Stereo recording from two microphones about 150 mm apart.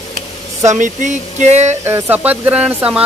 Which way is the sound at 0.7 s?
55° right (ahead or behind).